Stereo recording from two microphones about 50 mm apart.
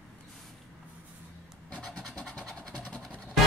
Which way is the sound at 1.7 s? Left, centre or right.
Left.